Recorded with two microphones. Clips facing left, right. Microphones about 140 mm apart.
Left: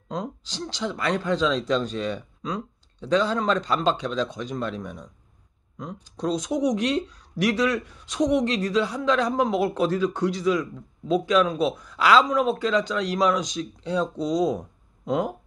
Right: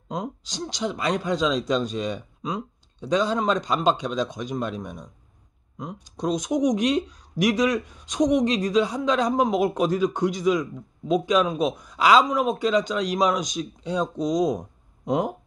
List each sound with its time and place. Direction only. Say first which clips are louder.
0.1 s speech: right 1 dB; 15° right (ahead or behind)